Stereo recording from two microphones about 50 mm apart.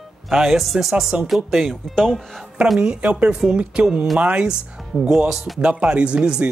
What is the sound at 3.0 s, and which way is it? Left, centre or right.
A woman's voice, right.